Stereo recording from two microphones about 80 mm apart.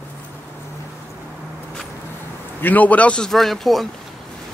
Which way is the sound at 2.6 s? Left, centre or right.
Left.